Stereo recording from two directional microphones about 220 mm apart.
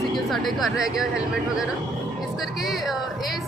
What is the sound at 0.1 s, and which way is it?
A woman's voice, centre (ahead or behind).